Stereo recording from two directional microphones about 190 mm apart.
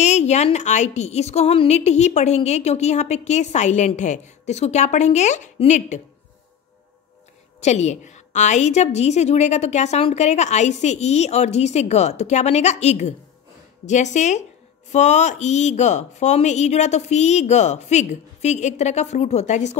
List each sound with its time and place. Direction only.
0.0 s a woman's voice: 35° left (ahead or behind)
7.6 s a woman's voice: 35° left (ahead or behind)